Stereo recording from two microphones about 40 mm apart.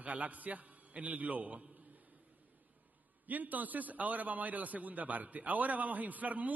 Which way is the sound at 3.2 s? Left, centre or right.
Right.